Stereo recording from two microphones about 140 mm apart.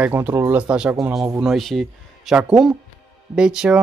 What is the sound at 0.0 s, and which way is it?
Speech, 15° right (ahead or behind).